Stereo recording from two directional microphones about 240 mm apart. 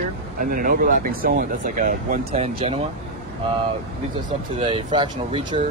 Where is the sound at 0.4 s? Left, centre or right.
Right.